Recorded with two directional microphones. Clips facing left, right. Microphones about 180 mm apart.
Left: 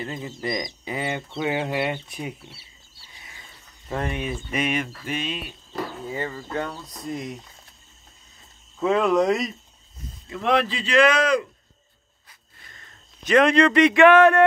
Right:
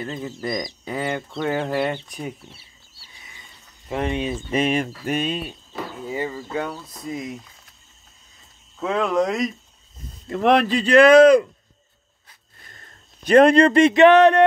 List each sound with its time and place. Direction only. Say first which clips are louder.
0.0 s speech: right 2 dB; 15° left (ahead or behind)
3.9 s speech: right 4 dB; 20° right (ahead or behind); by 5.6 s 40° right (ahead or behind)
6.0 s speech: right 3 dB; 15° right (ahead or behind)
8.7 s speech: left 1 dB; centre (ahead or behind)
10.2 s speech: right 5 dB; 55° right (ahead or behind)
12.7 s speech: right 2 dB; 35° right (ahead or behind); by 14.4 s 20° right (ahead or behind)